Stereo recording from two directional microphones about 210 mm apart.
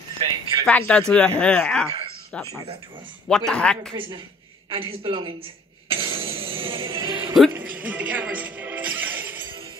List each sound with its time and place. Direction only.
0.2 s a sound: 20° right (ahead or behind)
0.7 s speech: 5° left (ahead or behind)
4.6 s a man's voice: 25° right (ahead or behind)
5.9 s music: 25° right (ahead or behind)
7.5 s music: 10° right (ahead or behind)